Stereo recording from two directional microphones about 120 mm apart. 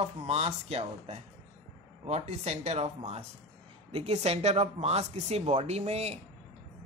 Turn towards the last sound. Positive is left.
turn(degrees=-65)  # may be behind; listen again after turning